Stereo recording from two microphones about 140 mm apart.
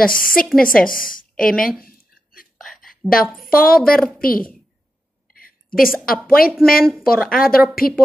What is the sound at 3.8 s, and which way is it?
Speech, centre (ahead or behind).